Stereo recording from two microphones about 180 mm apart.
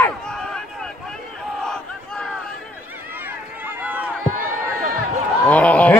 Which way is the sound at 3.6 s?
10° right (ahead or behind).